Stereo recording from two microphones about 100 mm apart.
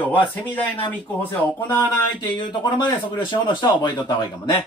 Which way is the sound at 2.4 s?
50° left (ahead or behind).